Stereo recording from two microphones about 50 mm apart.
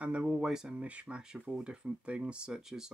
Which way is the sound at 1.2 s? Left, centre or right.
Centre.